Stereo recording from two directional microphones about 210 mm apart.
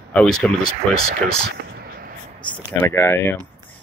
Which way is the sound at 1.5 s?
45° right (ahead or behind).